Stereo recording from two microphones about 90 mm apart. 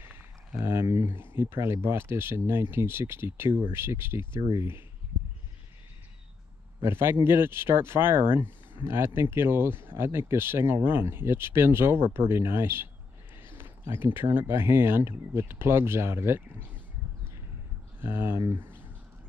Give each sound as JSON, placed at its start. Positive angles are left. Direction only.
{"t": 0.7, "sound": "a sound", "side_deg": -35}
{"t": 1.0, "sound": "speech", "side_deg": -25}
{"t": 6.8, "sound": "speech", "side_deg": -25}
{"t": 18.0, "sound": "speech", "side_deg": -25}